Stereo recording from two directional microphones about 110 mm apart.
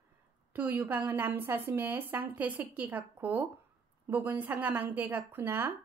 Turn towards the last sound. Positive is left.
turn(degrees=-20)  # may be behind; listen again after turning